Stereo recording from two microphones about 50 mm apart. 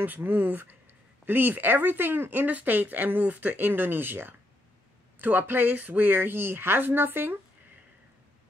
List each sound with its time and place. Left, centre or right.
0.0 s speech: right